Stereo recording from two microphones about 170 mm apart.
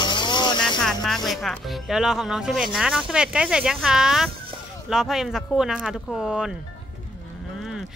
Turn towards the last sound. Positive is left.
turn(degrees=-5)  # may be behind; listen again after turning